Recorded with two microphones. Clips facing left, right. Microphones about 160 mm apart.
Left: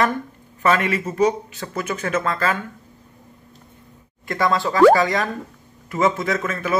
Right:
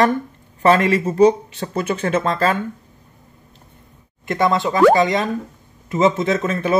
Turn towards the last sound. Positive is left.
turn(degrees=-30)  # may be behind; listen again after turning